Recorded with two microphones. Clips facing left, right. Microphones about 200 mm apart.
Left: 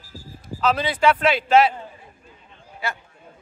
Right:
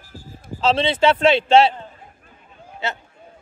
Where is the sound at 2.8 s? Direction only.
25° right (ahead or behind).